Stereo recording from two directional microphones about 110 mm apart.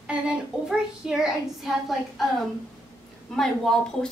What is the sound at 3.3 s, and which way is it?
Speech, 5° left (ahead or behind).